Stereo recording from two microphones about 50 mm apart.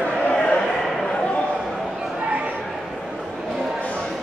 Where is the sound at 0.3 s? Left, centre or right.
Centre.